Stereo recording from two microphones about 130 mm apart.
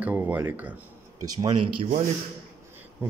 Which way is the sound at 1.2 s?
30° right (ahead or behind).